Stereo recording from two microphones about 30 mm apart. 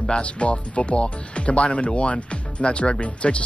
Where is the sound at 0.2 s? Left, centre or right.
Left.